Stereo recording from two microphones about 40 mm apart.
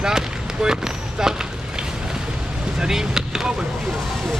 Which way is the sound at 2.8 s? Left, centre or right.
Centre.